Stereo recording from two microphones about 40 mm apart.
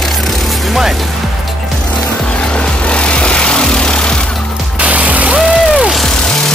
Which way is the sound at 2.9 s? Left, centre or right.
Left.